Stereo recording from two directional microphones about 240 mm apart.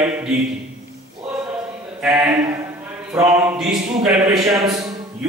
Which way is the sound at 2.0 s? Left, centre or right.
Centre.